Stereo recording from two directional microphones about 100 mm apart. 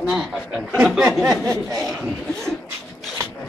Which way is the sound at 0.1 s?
5° right (ahead or behind).